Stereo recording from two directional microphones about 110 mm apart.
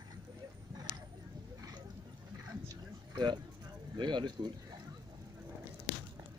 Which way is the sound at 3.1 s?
45° right (ahead or behind).